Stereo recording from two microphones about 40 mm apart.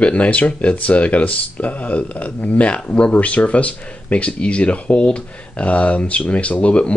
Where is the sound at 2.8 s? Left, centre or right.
Left.